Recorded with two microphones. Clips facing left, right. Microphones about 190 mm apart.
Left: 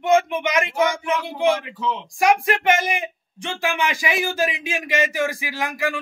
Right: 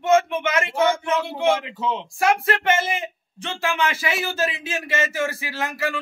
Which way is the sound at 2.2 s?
15° left (ahead or behind).